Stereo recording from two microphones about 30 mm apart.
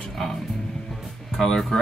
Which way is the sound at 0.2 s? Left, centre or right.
Centre.